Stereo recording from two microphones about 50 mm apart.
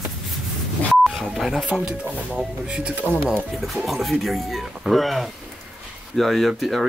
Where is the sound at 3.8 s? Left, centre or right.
Centre.